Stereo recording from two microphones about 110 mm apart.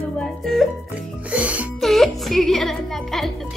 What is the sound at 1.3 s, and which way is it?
Music, 10° right (ahead or behind).